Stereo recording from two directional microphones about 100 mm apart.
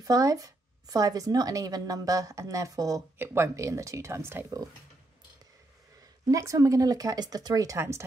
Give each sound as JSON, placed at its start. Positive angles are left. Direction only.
{"t": 0.0, "sound": "speech", "side_deg": -35}
{"t": 6.2, "sound": "speech", "side_deg": -30}